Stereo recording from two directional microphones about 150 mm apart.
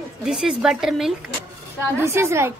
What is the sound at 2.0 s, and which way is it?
Speech, 15° right (ahead or behind).